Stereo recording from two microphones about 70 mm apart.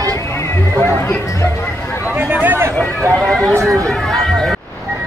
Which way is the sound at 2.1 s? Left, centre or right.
Centre.